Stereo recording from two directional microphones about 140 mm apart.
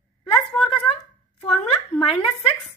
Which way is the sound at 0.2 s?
40° left (ahead or behind).